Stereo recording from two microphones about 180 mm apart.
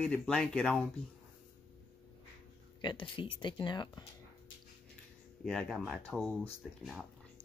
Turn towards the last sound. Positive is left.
turn(degrees=5)  # may be behind; listen again after turning